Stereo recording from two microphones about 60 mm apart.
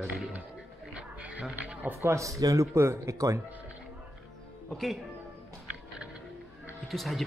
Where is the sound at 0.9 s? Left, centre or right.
Right.